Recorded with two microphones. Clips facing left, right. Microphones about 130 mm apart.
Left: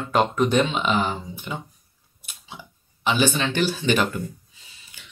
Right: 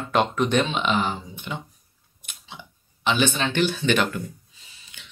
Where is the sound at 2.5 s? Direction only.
10° left (ahead or behind).